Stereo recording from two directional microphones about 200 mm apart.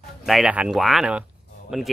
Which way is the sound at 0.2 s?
Centre (ahead or behind).